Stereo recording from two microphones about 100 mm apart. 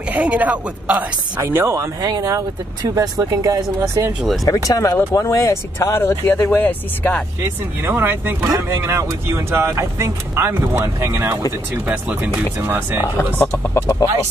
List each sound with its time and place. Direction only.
0.1 s speech: 15° right (ahead or behind)
1.4 s speech: 25° right (ahead or behind)
4.5 s speech: 35° left (ahead or behind); by 7.2 s 20° left (ahead or behind)
7.9 s speech: 20° right (ahead or behind)
13.2 s speech: 25° left (ahead or behind)